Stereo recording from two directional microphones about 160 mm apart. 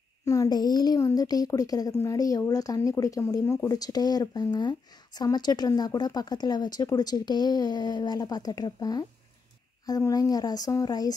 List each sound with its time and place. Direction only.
0.2 s a child's voice: 20° left (ahead or behind)